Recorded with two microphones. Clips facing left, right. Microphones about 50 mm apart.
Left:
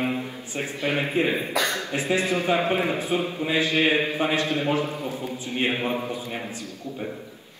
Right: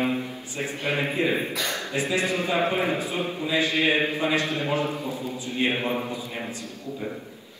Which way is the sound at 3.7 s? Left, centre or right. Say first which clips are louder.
Left 2 dB; left.